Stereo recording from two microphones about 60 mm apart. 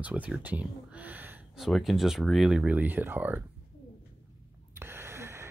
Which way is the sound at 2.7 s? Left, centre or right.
Right.